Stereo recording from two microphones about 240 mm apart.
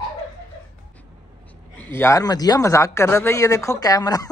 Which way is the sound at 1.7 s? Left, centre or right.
Centre.